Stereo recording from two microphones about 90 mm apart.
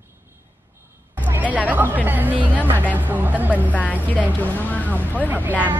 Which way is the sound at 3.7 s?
15° left (ahead or behind).